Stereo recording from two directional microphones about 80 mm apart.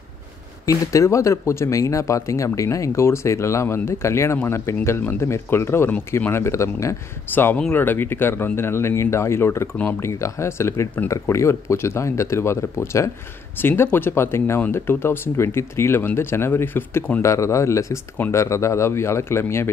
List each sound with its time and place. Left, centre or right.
0.7 s speech: left
7.3 s speech: left
17.2 s speech: left